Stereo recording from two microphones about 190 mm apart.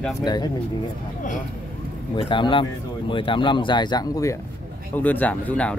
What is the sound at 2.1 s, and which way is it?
Speech, 25° left (ahead or behind).